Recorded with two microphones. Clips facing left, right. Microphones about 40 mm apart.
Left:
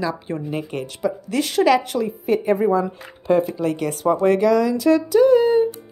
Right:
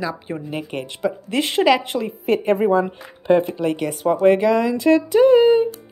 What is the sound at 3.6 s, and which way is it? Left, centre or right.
Speech, right.